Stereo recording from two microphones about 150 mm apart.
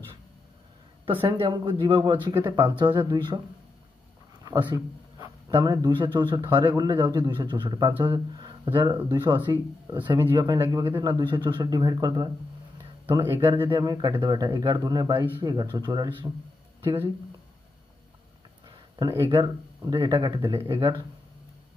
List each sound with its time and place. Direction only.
1.2 s speech: 35° right (ahead or behind)
4.5 s a man's voice: 25° right (ahead or behind)
18.9 s a man's voice: 25° right (ahead or behind)